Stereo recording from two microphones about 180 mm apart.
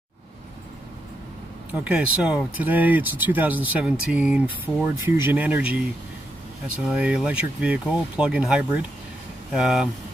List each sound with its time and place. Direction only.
1.7 s speech: 5° right (ahead or behind)
6.9 s speech: 5° right (ahead or behind)